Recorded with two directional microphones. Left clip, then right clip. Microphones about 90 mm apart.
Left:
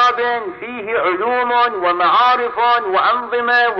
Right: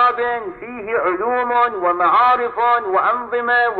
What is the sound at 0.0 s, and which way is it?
A man's voice, 35° left (ahead or behind).